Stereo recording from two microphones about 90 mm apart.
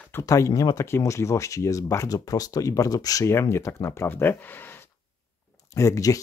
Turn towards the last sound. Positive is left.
turn(degrees=35)  # may be behind; listen again after turning